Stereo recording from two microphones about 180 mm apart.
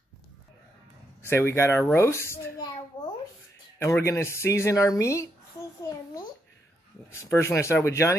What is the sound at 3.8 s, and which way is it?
Speech, 15° left (ahead or behind).